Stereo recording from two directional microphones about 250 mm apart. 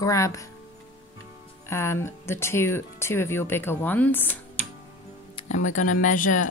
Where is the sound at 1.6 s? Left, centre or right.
Centre.